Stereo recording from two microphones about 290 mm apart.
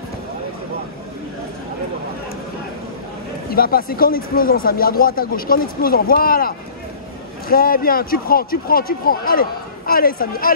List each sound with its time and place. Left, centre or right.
3.4 s speech: left